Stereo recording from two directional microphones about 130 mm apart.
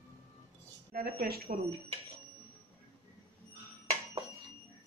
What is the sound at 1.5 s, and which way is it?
Speech, 90° right.